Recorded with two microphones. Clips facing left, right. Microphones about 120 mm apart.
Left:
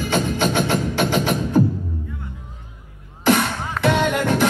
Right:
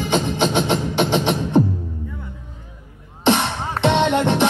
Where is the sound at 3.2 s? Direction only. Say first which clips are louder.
Even; 25° right (ahead or behind).